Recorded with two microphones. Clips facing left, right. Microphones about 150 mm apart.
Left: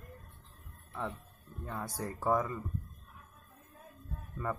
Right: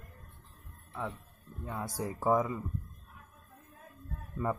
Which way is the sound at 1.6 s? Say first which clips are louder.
Right 2 dB; 10° right (ahead or behind).